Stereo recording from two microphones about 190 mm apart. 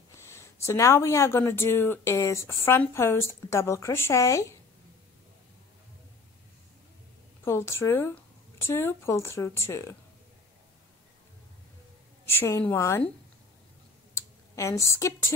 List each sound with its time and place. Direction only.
0.3 s speech: 15° left (ahead or behind)
7.4 s speech: 15° left (ahead or behind)
12.3 s speech: 15° left (ahead or behind)
14.1 s speech: 15° left (ahead or behind)